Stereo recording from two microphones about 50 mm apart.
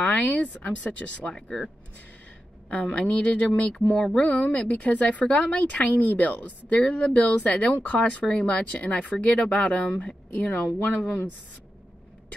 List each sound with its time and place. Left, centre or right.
0.0 s speech: left
1.3 s speech: centre
2.7 s speech: left
4.3 s speech: left